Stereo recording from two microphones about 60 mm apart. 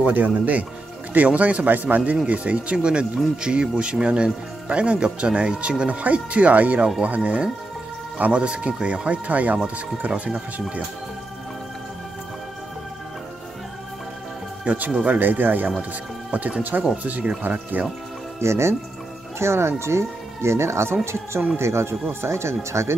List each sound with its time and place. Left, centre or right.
0.0 s speech: right
8.2 s speech: centre
14.6 s speech: right
16.3 s speech: centre
18.4 s speech: right